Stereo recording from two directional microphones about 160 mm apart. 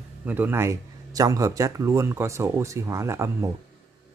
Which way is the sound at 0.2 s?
10° right (ahead or behind).